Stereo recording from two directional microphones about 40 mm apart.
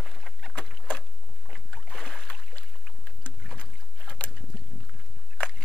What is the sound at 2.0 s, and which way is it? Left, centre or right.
Boat, centre.